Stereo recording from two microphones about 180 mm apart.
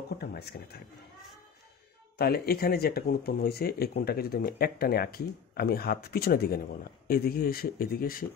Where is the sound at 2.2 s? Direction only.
60° left (ahead or behind).